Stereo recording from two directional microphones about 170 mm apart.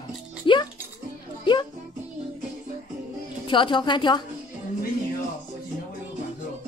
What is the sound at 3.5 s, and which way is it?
Speech, 30° left (ahead or behind).